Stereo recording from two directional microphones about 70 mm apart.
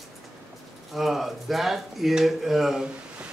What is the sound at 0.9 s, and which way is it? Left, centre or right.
Speech, centre.